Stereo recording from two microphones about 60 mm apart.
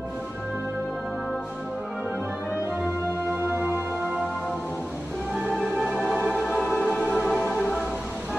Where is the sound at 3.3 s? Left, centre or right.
Right.